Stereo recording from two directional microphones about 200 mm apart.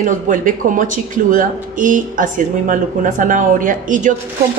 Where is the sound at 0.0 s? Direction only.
40° right (ahead or behind).